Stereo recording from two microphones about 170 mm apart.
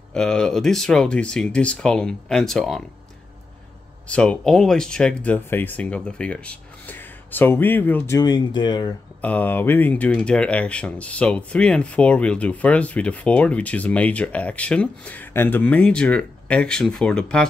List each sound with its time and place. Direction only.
0.1 s speech: 5° left (ahead or behind)
4.1 s speech: 5° left (ahead or behind)
8.2 s speech: 25° left (ahead or behind)
9.2 s speech: 10° left (ahead or behind)